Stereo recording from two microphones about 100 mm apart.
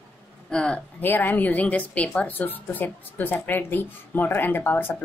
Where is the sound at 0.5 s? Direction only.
10° left (ahead or behind).